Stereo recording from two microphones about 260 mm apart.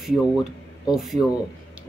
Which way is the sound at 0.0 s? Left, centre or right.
Centre.